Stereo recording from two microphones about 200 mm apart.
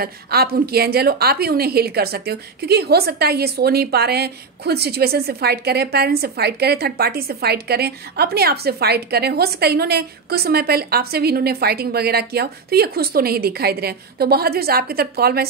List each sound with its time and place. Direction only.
0.0 s a woman's voice: 50° right (ahead or behind)